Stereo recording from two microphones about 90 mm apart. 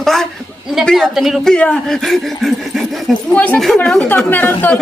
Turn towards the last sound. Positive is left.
turn(degrees=20)  # may be behind; listen again after turning